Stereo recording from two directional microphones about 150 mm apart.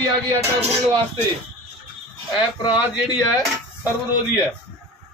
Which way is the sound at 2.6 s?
25° left (ahead or behind).